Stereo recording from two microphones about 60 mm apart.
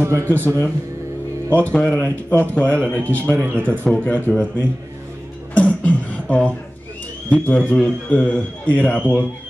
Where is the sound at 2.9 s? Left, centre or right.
Left.